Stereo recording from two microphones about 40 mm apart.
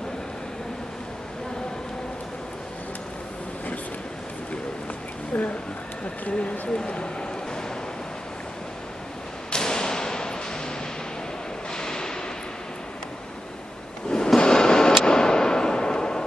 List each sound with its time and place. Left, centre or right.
6.2 s speech: left
6.7 s speech: left
9.5 s whip: centre
11.7 s a sound: centre
14.1 s a sound: centre
15.0 s arrow: centre